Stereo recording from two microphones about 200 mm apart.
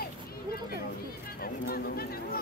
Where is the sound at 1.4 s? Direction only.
50° left (ahead or behind).